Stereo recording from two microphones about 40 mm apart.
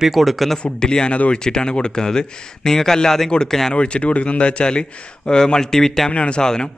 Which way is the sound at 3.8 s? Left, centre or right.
Left.